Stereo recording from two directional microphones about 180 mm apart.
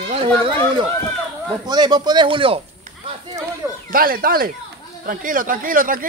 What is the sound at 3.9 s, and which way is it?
Speech, 55° right (ahead or behind).